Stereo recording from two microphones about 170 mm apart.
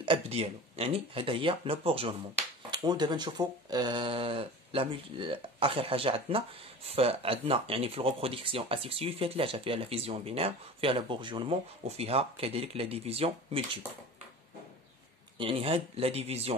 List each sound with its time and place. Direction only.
0.0 s speech: 35° right (ahead or behind)
15.3 s speech: 30° right (ahead or behind)